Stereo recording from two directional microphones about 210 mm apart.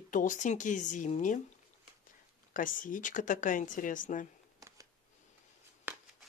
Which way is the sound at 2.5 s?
40° left (ahead or behind).